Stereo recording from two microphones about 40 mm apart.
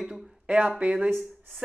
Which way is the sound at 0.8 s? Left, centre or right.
Right.